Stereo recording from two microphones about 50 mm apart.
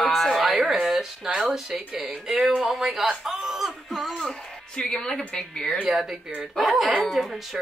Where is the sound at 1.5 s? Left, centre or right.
Centre.